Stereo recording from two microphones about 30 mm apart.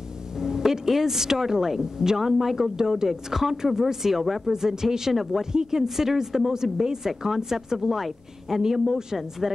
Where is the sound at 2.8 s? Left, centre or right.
Right; by 4.5 s centre.